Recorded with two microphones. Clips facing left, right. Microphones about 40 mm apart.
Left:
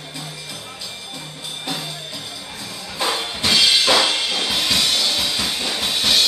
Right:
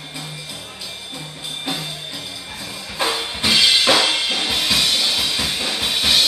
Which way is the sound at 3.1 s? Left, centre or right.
Centre.